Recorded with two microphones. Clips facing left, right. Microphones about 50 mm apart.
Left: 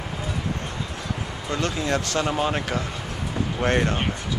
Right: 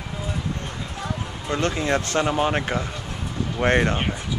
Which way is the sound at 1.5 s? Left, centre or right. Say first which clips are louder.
Right 2 dB; right.